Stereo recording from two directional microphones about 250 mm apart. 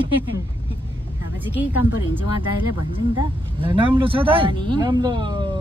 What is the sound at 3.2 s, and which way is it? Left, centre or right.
Speech, centre.